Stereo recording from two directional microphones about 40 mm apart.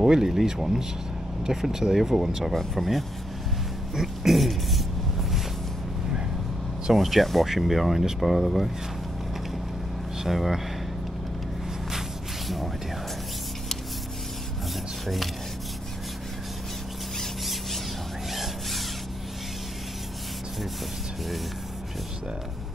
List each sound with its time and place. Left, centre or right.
0.0 s speech: centre
6.9 s speech: centre
10.2 s speech: centre
17.2 s squeal: centre
18.3 s a sound: centre